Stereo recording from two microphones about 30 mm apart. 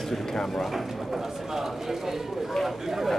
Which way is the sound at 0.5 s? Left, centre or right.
Centre.